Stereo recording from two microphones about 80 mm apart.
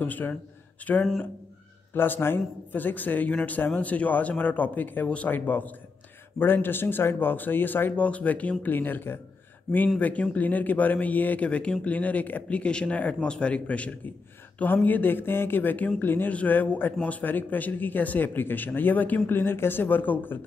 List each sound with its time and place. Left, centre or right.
0.0 s a man's voice: left